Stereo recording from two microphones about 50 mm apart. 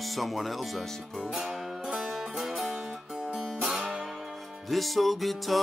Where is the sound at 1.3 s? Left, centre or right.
Centre.